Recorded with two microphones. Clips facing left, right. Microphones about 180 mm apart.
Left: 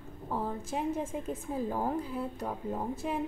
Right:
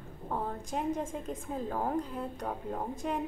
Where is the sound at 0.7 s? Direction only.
5° left (ahead or behind).